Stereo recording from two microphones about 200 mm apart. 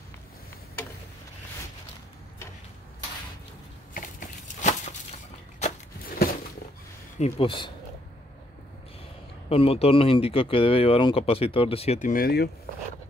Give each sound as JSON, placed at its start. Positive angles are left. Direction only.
{"t": 3.9, "sound": "a sound", "side_deg": 40}
{"t": 7.2, "sound": "speech", "side_deg": 30}
{"t": 9.5, "sound": "speech", "side_deg": 30}